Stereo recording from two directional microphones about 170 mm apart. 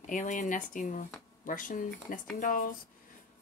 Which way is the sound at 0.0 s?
45° left (ahead or behind).